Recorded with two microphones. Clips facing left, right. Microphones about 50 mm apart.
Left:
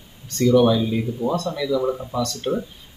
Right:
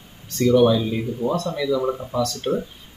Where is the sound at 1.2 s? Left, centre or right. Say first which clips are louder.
Right 1 dB; right.